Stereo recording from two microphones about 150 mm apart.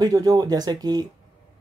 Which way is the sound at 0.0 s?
25° right (ahead or behind).